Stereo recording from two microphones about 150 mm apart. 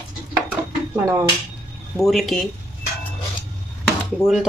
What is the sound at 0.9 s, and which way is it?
Speech, 20° right (ahead or behind).